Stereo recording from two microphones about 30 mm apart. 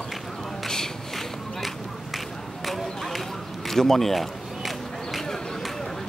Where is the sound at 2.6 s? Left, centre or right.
Centre.